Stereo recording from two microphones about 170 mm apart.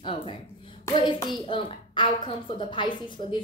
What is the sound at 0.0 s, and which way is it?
A woman's voice, 30° left (ahead or behind).